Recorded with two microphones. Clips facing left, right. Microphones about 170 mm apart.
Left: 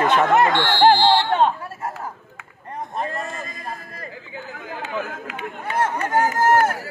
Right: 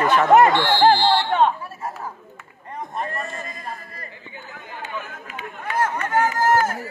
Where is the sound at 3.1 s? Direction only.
90° left.